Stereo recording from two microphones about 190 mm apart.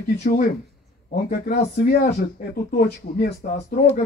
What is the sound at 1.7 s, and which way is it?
Speech, 40° left (ahead or behind).